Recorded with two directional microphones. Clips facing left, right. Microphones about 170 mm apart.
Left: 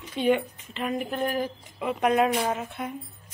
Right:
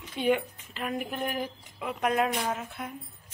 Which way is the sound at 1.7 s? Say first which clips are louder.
Left 5 dB; 5° left (ahead or behind).